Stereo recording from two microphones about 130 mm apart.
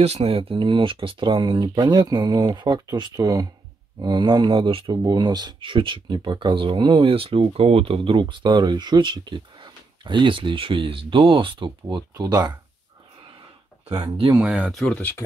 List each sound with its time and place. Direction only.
0.0 s speech: 55° right (ahead or behind); by 12.5 s 30° right (ahead or behind)
14.4 s speech: 5° right (ahead or behind)
15.0 s speech: 15° left (ahead or behind)